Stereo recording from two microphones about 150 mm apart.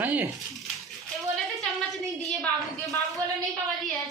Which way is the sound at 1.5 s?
Centre (ahead or behind).